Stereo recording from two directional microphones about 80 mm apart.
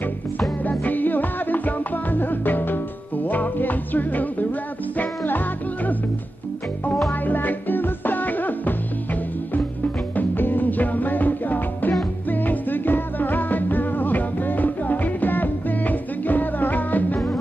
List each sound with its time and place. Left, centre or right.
0.7 s music: left
7.1 s music: left
10.1 s music: left